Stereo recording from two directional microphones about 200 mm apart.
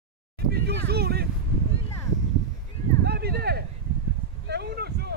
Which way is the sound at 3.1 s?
50° right (ahead or behind).